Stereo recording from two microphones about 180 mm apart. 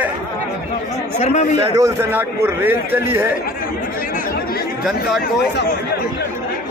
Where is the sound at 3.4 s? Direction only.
50° left (ahead or behind).